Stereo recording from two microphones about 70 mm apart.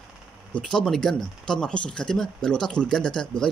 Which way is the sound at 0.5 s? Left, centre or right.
Centre.